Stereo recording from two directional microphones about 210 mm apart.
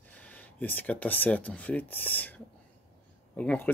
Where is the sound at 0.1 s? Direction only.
5° left (ahead or behind).